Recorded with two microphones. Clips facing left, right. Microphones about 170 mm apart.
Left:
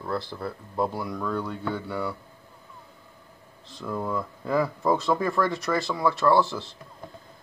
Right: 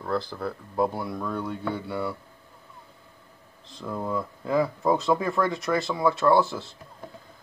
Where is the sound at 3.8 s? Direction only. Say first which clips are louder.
Left 1 dB; 15° right (ahead or behind).